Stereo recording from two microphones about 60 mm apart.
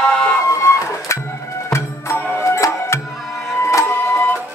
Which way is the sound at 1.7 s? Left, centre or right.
Left.